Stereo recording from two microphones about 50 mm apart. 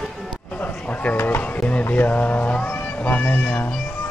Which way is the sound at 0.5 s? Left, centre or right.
Left.